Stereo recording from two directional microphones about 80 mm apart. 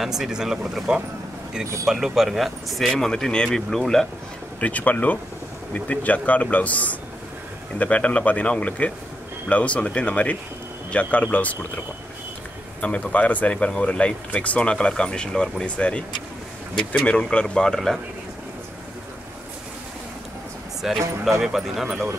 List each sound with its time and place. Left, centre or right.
0.0 s speech: centre
4.6 s speech: centre
12.8 s speech: centre
20.8 s speech: centre